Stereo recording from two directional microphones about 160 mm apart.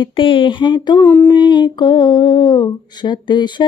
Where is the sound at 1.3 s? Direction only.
25° left (ahead or behind).